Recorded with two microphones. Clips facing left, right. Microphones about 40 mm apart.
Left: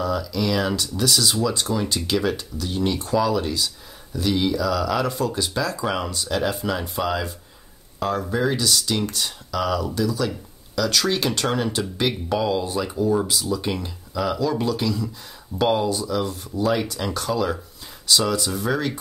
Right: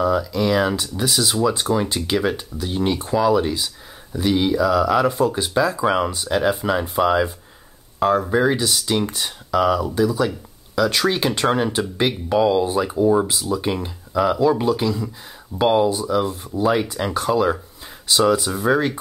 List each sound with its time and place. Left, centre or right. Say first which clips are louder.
0.0 s speech: right 5 dB; centre